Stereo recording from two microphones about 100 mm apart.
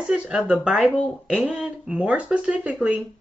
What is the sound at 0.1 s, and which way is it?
Speech, 10° right (ahead or behind).